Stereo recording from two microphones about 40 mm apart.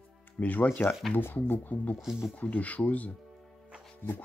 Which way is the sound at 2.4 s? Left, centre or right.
Left.